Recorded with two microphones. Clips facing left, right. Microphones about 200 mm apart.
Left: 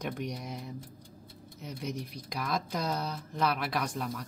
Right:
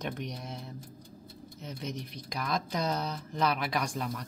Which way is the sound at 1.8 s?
10° left (ahead or behind).